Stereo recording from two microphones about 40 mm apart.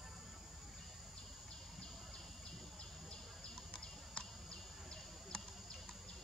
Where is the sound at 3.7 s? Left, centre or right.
Centre.